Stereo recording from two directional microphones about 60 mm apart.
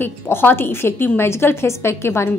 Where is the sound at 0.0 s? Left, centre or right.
Left.